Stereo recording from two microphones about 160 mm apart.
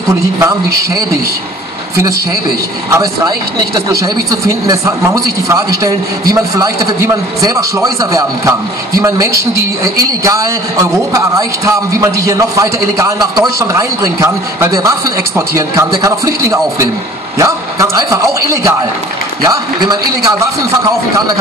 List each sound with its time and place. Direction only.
0.4 s a man's voice: 20° right (ahead or behind)
2.9 s a man's voice: 25° right (ahead or behind)